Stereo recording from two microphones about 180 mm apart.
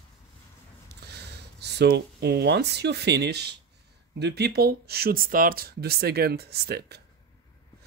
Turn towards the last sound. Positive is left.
turn(degrees=-60)  # may be behind; listen again after turning